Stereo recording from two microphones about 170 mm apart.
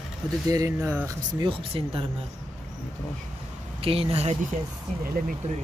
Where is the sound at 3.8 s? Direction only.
35° right (ahead or behind).